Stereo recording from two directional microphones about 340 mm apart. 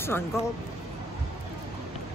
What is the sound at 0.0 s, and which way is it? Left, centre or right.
Speech, centre.